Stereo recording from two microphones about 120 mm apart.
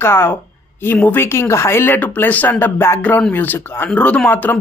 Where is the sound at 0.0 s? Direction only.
20° left (ahead or behind).